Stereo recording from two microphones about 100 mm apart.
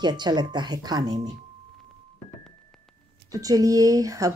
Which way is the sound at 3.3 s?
35° right (ahead or behind).